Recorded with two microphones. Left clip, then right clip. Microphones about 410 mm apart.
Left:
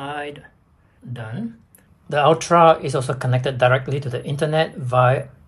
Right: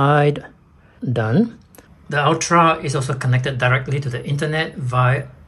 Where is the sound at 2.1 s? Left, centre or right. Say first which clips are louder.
Left 1 dB; centre.